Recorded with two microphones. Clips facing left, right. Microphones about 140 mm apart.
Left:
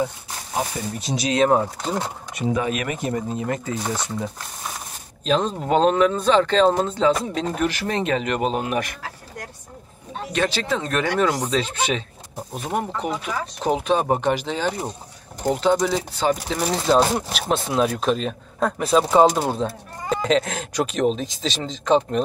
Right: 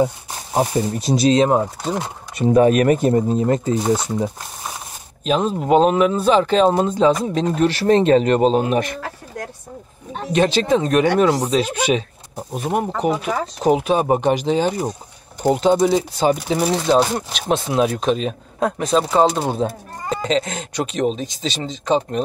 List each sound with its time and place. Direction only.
0.6 s speech: 35° right (ahead or behind)
1.6 s speech: 5° right (ahead or behind)
2.3 s speech: 40° right (ahead or behind); by 4.3 s 25° right (ahead or behind)
5.2 s speech: 5° right (ahead or behind)
7.5 s speech: 30° right (ahead or behind)
10.2 s speech: 20° right (ahead or behind)
13.1 s speech: 55° right (ahead or behind)
13.6 s speech: 10° right (ahead or behind)